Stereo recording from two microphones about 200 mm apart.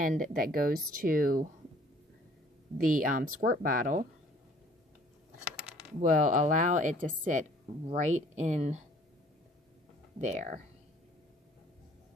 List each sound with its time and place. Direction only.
0.0 s speech: 45° right (ahead or behind)
2.8 s speech: 45° right (ahead or behind)
5.9 s speech: 40° right (ahead or behind)
10.2 s speech: 35° right (ahead or behind)